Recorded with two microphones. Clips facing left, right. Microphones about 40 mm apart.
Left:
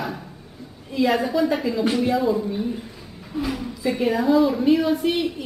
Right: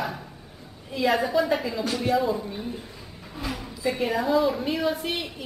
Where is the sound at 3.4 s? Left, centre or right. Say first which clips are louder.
Left 7 dB; centre.